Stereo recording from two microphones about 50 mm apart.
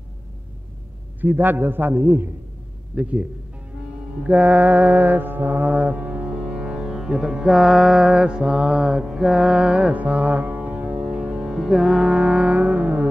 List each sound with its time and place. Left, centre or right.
1.2 s a man's voice: right
3.0 s speech: right
4.2 s music: right; by 7.5 s centre
7.5 s mantra: centre
8.1 s mantra: centre
11.6 s music: centre
12.1 s music: right